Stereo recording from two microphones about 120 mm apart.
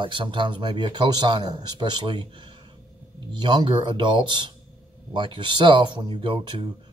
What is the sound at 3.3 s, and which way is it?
Speech, 40° right (ahead or behind).